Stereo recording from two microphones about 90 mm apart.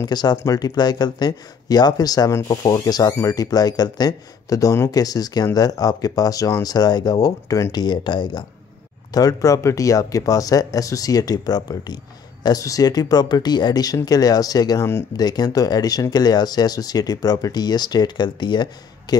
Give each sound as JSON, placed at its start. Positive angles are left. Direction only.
{"t": 0.0, "sound": "speech", "side_deg": 50}
{"t": 7.7, "sound": "speech", "side_deg": 55}
{"t": 9.1, "sound": "speech", "side_deg": 40}